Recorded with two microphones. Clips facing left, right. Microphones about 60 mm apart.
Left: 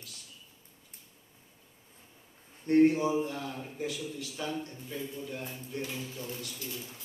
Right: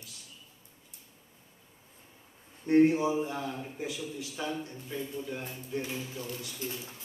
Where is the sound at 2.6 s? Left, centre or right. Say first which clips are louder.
Even; centre.